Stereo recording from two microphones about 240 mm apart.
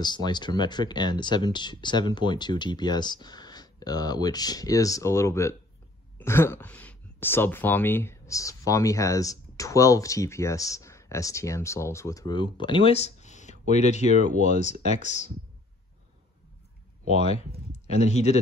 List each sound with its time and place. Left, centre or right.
0.0 s speech: centre
17.1 s speech: left